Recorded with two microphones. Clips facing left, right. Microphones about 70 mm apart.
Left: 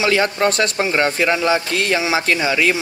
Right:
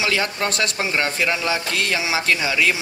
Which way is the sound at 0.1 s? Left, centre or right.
Centre.